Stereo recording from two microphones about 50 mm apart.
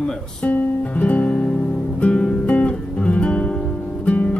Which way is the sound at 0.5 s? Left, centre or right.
Left.